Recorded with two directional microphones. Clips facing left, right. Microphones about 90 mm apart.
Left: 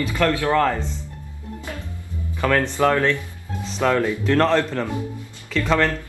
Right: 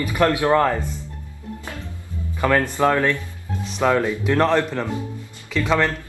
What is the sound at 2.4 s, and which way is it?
Speech, 15° right (ahead or behind).